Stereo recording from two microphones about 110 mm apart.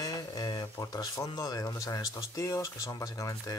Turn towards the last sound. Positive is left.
turn(degrees=30)  # may be behind; listen again after turning